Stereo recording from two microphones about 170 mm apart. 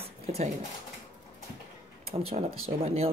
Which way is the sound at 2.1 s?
35° right (ahead or behind).